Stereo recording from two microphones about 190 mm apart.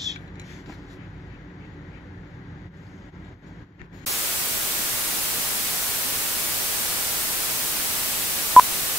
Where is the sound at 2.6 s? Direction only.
Centre (ahead or behind).